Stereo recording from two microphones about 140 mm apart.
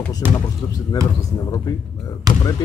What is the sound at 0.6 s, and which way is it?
Speech, 25° left (ahead or behind).